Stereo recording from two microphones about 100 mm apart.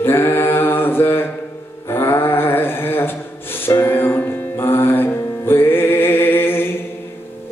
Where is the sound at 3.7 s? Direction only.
25° left (ahead or behind).